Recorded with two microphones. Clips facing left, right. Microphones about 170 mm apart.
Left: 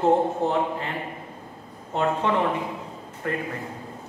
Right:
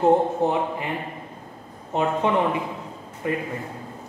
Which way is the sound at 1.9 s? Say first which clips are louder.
Right 2 dB; 15° right (ahead or behind).